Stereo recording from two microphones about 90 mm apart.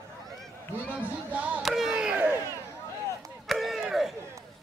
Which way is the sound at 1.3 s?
15° right (ahead or behind).